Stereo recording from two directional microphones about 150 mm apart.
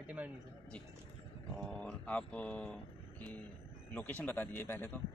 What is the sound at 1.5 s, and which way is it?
Speech, 5° left (ahead or behind).